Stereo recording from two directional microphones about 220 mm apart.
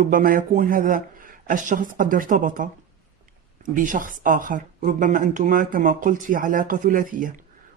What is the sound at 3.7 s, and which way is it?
Speech, 35° right (ahead or behind).